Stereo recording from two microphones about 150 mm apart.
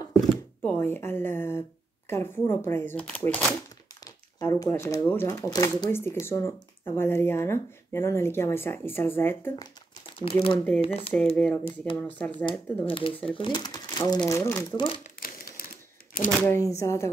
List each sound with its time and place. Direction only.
0.1 s speech: 10° left (ahead or behind)
4.0 s speech: 25° left (ahead or behind)
9.6 s crumpling: 35° left (ahead or behind)
10.8 s speech: 40° left (ahead or behind)
11.3 s speech: 5° left (ahead or behind)
12.8 s speech: 35° left (ahead or behind); by 14.8 s 20° left (ahead or behind)
15.1 s crumpling: 75° left (ahead or behind)
16.3 s speech: 10° left (ahead or behind)
16.5 s speech: 20° left (ahead or behind)